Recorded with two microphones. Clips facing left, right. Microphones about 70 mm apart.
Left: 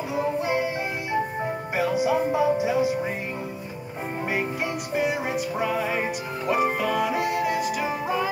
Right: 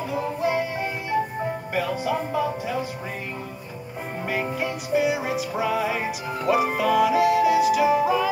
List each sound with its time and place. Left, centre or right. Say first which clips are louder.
2.0 s music: left 3 dB; centre
4.3 s music: right 2 dB; centre